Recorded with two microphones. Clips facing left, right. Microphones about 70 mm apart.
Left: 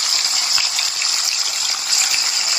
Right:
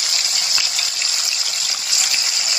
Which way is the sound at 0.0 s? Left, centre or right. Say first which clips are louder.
Left 2 dB; left.